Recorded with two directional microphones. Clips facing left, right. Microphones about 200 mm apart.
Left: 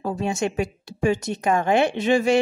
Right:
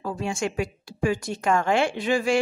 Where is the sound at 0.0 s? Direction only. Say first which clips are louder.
Left 3 dB; 20° left (ahead or behind).